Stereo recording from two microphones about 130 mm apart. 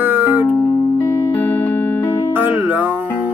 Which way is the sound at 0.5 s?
25° left (ahead or behind).